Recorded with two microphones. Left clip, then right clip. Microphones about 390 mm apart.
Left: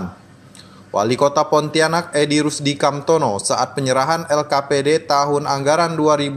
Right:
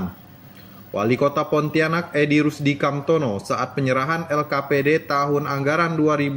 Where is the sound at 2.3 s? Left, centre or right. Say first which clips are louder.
Left 1 dB; left.